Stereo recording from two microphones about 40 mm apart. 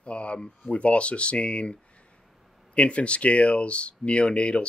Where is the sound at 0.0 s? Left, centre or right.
Left.